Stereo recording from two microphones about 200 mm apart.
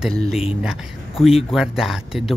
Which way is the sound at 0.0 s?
Centre (ahead or behind).